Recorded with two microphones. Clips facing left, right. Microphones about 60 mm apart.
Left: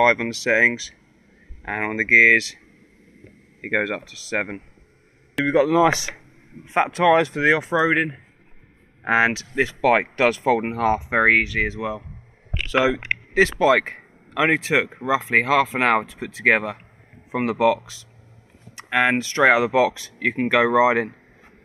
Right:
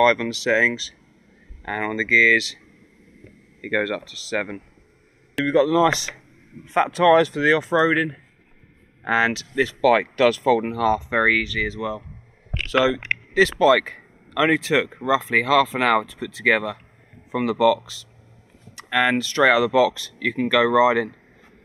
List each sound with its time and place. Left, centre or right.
0.0 s speech: left
3.6 s speech: left
20.2 s speech: left